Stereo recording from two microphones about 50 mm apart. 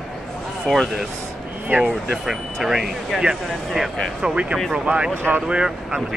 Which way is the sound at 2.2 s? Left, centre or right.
Centre.